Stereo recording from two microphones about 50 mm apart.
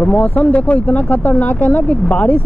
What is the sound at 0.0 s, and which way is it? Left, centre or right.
Speech, left.